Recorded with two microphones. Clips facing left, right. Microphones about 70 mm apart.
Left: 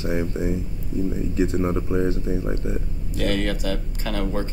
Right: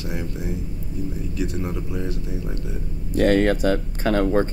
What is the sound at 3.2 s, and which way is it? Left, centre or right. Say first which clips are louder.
Speech: right 7 dB; right.